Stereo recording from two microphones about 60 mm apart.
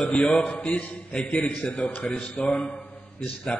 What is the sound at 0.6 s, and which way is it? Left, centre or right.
A man's voice, left.